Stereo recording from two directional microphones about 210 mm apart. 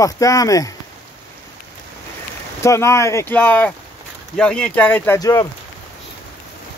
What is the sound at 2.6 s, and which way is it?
Speech, 15° left (ahead or behind).